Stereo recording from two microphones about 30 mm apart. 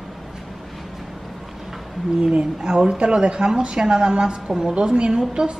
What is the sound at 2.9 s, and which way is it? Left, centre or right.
A woman's voice, right.